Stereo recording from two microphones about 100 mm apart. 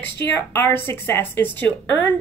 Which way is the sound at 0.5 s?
25° left (ahead or behind).